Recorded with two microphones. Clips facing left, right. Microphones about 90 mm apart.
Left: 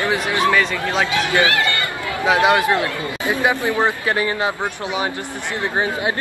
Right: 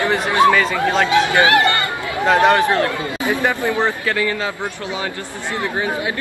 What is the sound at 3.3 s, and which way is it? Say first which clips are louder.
Speech: even; 15° left (ahead or behind).